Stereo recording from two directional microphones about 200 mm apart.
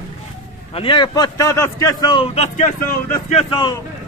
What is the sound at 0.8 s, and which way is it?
A man's voice, 25° left (ahead or behind).